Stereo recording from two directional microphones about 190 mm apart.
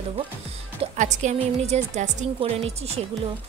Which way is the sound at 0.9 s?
40° right (ahead or behind).